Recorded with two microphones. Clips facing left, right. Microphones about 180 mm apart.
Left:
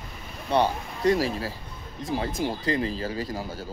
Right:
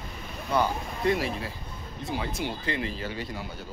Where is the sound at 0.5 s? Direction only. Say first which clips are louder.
Left 3 dB; 35° left (ahead or behind).